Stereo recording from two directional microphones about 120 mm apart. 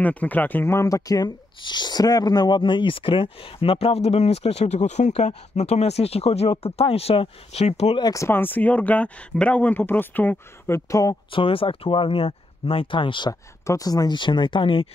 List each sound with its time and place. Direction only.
0.0 s speech: 10° left (ahead or behind); by 8.0 s 60° left (ahead or behind)
8.0 s speech: 25° left (ahead or behind)
10.9 s speech: 30° left (ahead or behind)
11.3 s speech: 50° left (ahead or behind)
13.3 s speech: 30° left (ahead or behind); by 14.9 s 45° left (ahead or behind)